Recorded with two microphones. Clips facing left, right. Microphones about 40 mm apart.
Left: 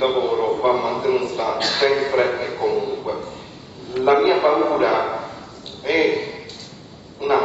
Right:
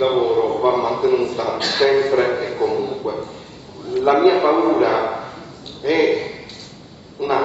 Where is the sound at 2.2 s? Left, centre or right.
Centre.